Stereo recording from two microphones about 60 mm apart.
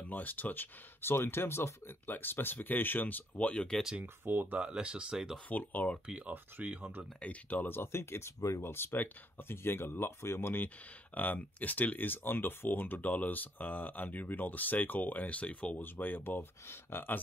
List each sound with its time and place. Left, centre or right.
0.0 s speech: left; by 3.8 s centre
4.0 s speech: right
4.6 s speech: centre
5.5 s speech: left
6.0 s speech: centre
6.3 s speech: right
7.2 s speech: left
7.6 s speech: left
8.4 s speech: left
8.6 s speech: left
11.1 s speech: left
15.8 s speech: left